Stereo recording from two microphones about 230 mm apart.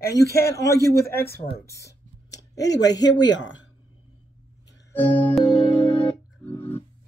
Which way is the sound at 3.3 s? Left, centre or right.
Left.